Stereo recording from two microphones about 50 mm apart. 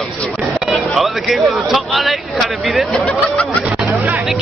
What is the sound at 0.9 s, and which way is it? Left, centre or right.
Speech, centre.